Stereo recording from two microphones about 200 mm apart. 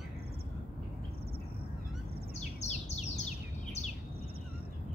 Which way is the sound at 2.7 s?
35° left (ahead or behind).